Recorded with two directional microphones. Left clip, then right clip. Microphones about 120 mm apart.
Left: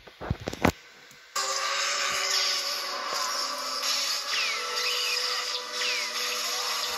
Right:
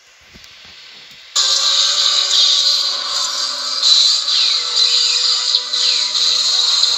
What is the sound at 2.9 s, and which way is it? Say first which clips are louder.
Music: right 10 dB; 15° right (ahead or behind).